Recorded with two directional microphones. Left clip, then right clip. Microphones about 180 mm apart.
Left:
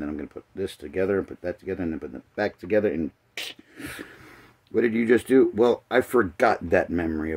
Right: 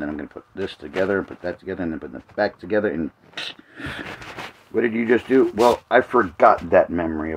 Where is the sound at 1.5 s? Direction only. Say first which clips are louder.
Right 2 dB; 5° left (ahead or behind).